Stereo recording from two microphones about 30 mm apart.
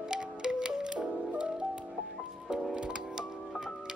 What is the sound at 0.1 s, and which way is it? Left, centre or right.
Music, right.